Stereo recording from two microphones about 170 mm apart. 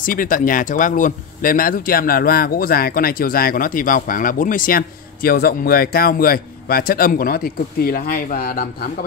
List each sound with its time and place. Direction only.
0.0 s speech: 55° left (ahead or behind)